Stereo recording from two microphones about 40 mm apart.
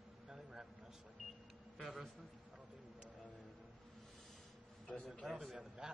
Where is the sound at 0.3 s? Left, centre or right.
Centre.